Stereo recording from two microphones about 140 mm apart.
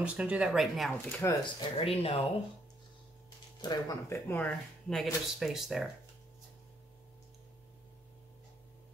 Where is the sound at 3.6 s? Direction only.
25° left (ahead or behind).